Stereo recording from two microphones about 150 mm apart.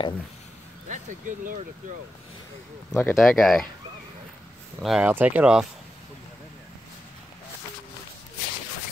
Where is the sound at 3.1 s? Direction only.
Centre (ahead or behind).